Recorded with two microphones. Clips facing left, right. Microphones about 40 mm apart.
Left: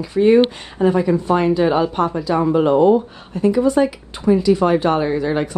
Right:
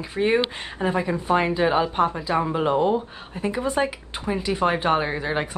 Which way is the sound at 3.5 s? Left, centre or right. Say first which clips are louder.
Left 8 dB; right.